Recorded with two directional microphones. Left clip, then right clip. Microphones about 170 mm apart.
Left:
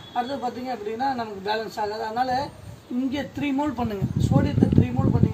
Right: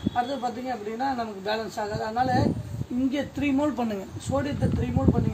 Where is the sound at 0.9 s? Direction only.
20° right (ahead or behind).